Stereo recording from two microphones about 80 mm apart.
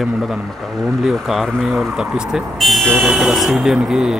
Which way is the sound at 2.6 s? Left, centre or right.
Centre.